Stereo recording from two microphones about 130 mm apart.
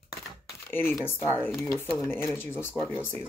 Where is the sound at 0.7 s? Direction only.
15° left (ahead or behind).